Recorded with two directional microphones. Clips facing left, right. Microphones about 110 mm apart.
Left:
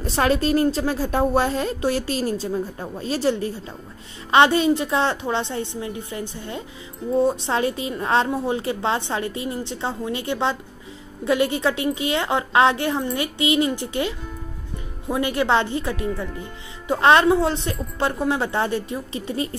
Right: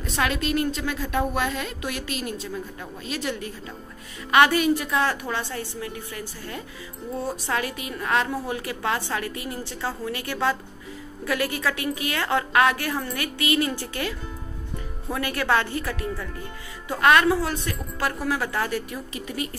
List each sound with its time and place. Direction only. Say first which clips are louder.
0.0 s a woman's voice: left 6 dB; 35° left (ahead or behind)